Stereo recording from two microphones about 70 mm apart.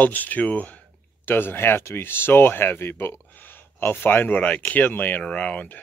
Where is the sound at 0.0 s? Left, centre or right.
Left.